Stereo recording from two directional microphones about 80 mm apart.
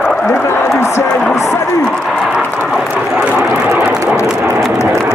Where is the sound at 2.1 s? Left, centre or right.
Centre.